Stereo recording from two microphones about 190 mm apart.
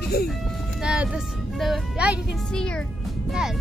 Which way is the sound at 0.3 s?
5° right (ahead or behind).